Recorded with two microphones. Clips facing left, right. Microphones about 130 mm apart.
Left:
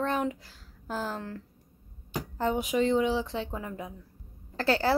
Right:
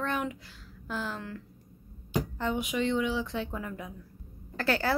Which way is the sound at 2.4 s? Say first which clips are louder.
Left 6 dB; 40° left (ahead or behind).